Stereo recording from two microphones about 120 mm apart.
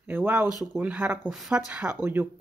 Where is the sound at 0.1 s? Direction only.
20° right (ahead or behind).